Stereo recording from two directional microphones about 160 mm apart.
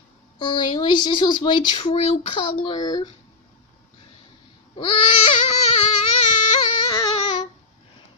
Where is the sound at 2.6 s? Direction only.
25° left (ahead or behind).